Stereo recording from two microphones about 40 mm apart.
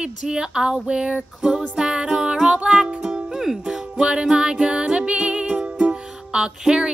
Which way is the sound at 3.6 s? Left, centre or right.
Right.